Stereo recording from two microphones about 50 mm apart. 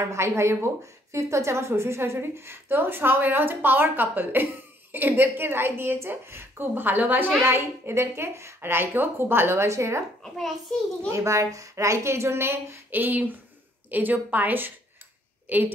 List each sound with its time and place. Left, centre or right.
0.0 s a woman's voice: right
2.1 s a woman's voice: right
7.4 s a child's voice: right
8.5 s a woman's voice: right
10.2 s a child's voice: centre
11.1 s a woman's voice: right
12.9 s a woman's voice: right